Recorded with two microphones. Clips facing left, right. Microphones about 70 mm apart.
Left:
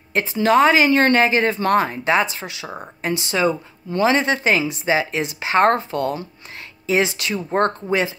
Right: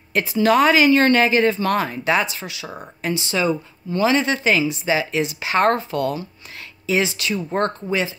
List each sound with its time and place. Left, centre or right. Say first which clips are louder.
0.1 s a woman's voice: even; left